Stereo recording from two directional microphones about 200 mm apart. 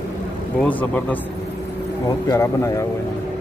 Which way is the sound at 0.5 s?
5° left (ahead or behind).